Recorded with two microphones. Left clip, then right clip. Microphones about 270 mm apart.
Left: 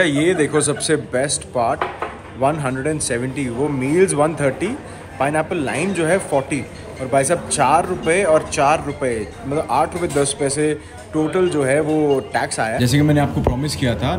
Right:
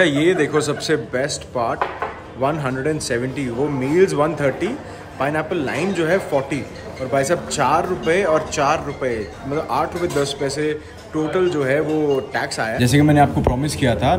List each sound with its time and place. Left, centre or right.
0.0 s a man's voice: centre